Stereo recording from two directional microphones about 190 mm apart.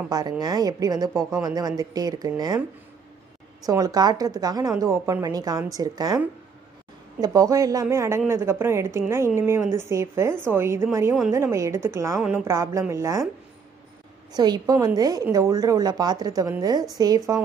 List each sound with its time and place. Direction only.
0.1 s a woman's voice: 20° right (ahead or behind)
3.6 s a woman's voice: 20° right (ahead or behind)
14.3 s a woman's voice: 20° right (ahead or behind)